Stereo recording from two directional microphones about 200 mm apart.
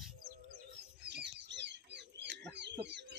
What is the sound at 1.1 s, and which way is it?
Bird, 60° right (ahead or behind).